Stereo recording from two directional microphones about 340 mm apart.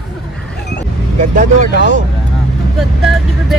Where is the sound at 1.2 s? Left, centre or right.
Right.